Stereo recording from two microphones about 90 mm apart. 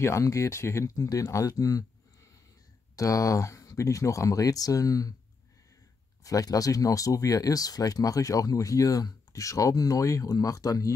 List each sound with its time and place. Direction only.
0.0 s speech: 35° left (ahead or behind)
3.0 s speech: 40° left (ahead or behind)
6.2 s speech: 40° left (ahead or behind)